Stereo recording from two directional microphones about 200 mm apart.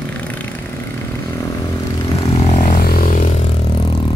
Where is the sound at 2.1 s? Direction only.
30° left (ahead or behind).